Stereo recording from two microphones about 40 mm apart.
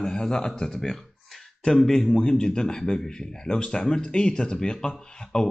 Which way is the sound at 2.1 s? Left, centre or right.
Centre.